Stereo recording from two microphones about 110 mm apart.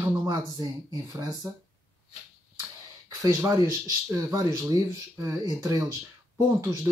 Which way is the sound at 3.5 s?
25° right (ahead or behind).